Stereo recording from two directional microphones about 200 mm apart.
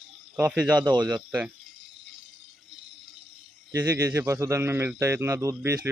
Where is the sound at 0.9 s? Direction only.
20° right (ahead or behind).